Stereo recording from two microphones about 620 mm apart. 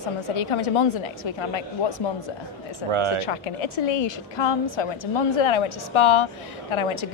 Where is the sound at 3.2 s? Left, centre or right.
Left.